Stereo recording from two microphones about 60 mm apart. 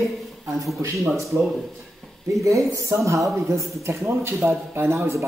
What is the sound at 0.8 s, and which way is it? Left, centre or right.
Speech, right.